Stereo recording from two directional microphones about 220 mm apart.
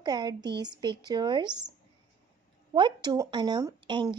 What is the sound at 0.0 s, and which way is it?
Speech, 20° right (ahead or behind).